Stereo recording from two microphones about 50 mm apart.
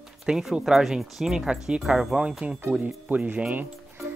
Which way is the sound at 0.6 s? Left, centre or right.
Centre.